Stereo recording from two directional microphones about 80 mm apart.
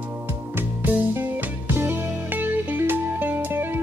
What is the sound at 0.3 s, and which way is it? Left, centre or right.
Music, right.